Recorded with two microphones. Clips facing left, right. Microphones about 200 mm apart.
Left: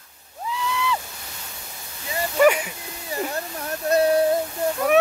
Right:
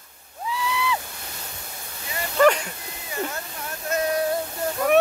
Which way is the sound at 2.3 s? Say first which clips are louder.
Left 1 dB; 10° left (ahead or behind).